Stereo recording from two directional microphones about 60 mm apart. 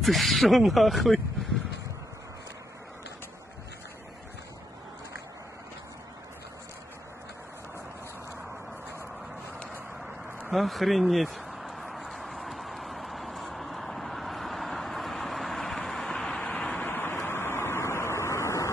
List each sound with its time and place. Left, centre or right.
0.0 s speech: centre
10.5 s a man's voice: centre
11.5 s vehicle: centre
16.4 s vehicle: left
16.8 s vehicle: left